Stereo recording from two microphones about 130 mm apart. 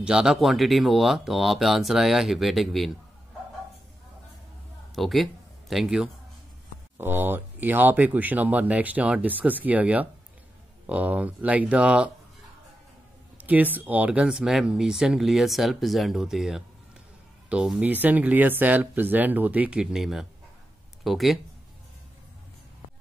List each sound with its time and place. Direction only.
0.0 s speech: 5° right (ahead or behind)
4.9 s speech: centre (ahead or behind)
7.0 s speech: 15° right (ahead or behind)
13.4 s speech: 10° right (ahead or behind)